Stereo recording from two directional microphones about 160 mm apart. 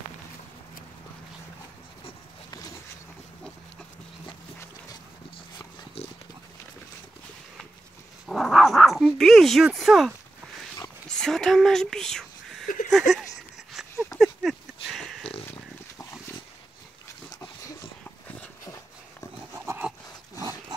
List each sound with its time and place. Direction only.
8.3 s dog: centre (ahead or behind)
11.1 s a sound: 5° left (ahead or behind)
17.3 s dog: 20° left (ahead or behind)